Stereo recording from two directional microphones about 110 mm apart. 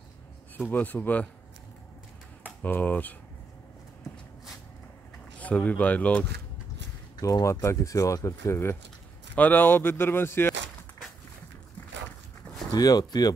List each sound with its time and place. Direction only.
0.7 s speech: 15° left (ahead or behind)
2.4 s speech: 15° left (ahead or behind)
5.4 s speech: 10° left (ahead or behind)
7.2 s speech: 35° left (ahead or behind)
12.7 s speech: 35° left (ahead or behind)